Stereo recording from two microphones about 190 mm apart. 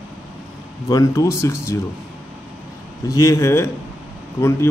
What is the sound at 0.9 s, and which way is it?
Speech, 20° left (ahead or behind).